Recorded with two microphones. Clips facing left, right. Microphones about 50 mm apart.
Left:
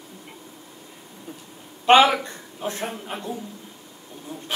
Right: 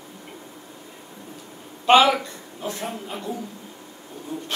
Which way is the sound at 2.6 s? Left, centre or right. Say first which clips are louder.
Left 1 dB; left.